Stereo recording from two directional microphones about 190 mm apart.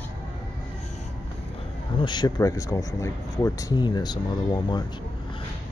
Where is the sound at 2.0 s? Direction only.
25° left (ahead or behind).